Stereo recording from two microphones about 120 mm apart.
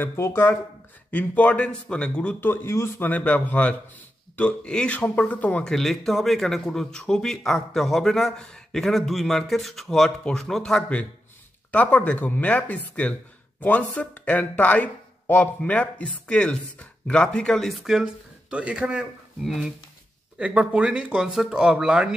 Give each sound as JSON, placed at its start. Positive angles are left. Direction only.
{"t": 0.0, "sound": "a man's voice", "side_deg": 20}